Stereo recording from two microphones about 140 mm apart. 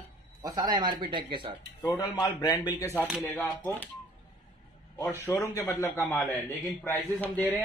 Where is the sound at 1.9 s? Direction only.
25° left (ahead or behind).